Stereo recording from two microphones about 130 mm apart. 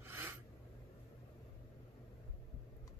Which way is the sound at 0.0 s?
20° right (ahead or behind).